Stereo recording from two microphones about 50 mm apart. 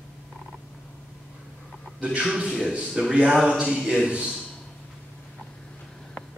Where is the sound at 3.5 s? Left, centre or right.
Centre.